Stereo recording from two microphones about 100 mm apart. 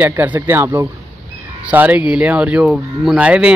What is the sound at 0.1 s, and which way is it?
Speech, 20° right (ahead or behind).